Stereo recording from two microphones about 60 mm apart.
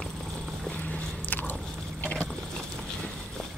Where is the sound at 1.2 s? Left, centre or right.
Left.